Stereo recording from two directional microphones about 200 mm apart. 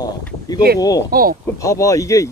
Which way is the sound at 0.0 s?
20° left (ahead or behind).